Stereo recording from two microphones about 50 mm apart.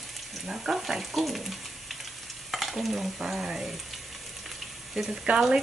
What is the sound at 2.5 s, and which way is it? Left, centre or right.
Stir, centre.